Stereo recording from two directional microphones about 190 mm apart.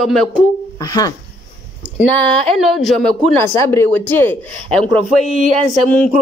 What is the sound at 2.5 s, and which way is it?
Speech, centre (ahead or behind).